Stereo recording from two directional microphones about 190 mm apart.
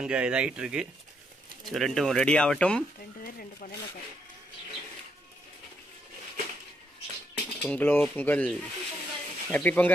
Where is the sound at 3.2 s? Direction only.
50° left (ahead or behind).